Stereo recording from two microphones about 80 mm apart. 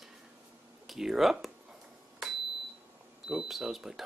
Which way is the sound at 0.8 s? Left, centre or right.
Centre.